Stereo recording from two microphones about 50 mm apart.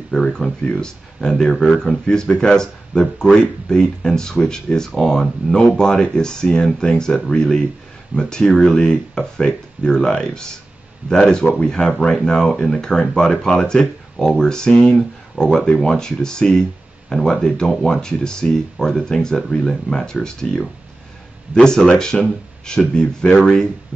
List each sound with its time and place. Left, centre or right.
0.1 s speech: centre
2.0 s speech: centre
12.2 s speech: centre